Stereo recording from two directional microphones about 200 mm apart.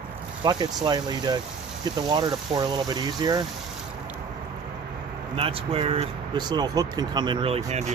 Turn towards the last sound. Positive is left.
turn(degrees=-35)  # may be behind; listen again after turning